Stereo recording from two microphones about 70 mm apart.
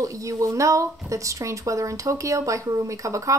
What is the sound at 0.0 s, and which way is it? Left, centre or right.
Speech, right.